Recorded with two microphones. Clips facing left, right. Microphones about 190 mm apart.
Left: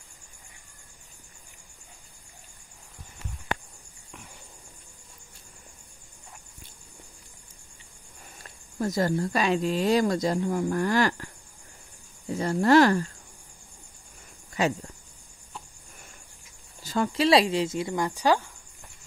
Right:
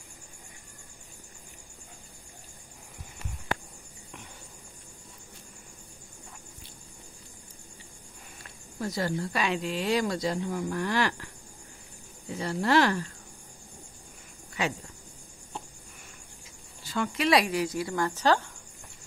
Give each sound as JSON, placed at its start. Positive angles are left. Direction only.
{"t": 8.7, "sound": "speech", "side_deg": 45}
{"t": 12.4, "sound": "speech", "side_deg": 45}
{"t": 16.8, "sound": "speech", "side_deg": 40}